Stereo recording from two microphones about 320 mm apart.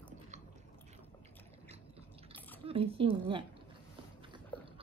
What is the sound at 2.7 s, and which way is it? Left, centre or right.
Speech, centre.